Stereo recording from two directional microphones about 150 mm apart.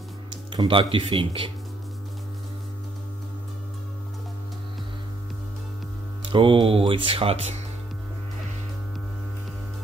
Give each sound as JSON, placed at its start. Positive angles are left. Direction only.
{"t": 0.5, "sound": "speech", "side_deg": -35}
{"t": 6.3, "sound": "speech", "side_deg": -35}